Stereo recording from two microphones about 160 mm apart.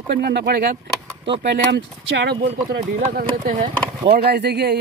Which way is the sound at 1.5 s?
90° right.